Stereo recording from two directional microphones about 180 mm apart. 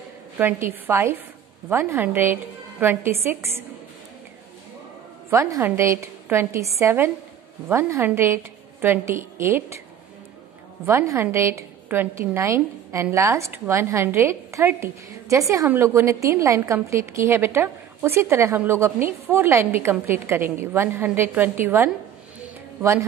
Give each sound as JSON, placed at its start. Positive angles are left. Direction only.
{"t": 0.4, "sound": "a woman's voice", "side_deg": -10}
{"t": 5.3, "sound": "a woman's voice", "side_deg": -15}
{"t": 10.9, "sound": "a woman's voice", "side_deg": -15}